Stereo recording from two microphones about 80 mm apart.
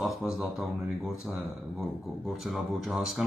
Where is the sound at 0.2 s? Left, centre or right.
Centre.